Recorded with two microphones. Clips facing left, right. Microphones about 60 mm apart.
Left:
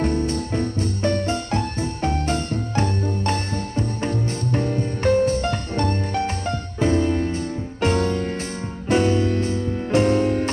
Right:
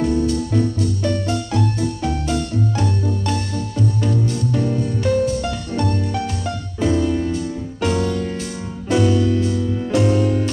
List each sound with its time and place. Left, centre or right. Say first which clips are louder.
0.0 s music: right 3 dB; left